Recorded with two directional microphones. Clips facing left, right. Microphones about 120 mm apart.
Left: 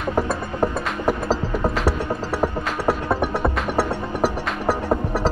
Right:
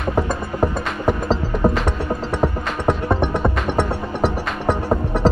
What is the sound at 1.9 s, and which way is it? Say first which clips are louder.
Music: even; 5° left (ahead or behind).